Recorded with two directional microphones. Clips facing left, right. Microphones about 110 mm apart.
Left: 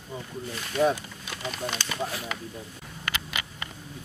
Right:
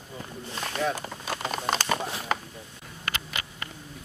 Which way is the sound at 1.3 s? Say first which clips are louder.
Right 4 dB; 45° right (ahead or behind).